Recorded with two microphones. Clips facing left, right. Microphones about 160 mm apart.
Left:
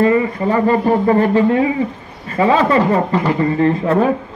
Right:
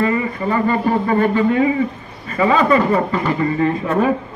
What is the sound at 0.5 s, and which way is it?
Speech, 35° left (ahead or behind).